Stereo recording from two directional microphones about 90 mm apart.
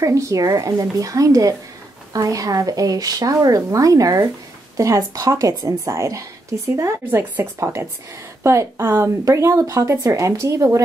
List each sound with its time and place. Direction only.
0.0 s speech: 35° right (ahead or behind)